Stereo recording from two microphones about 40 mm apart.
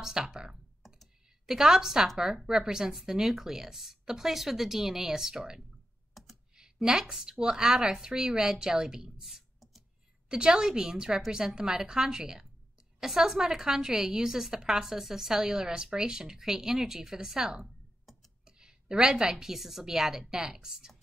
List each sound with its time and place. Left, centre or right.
0.0 s a woman's voice: centre
0.8 s computer keyboard: centre
1.5 s a woman's voice: centre
10.3 s a woman's voice: centre
18.4 s a sound: centre
19.4 s a woman's voice: centre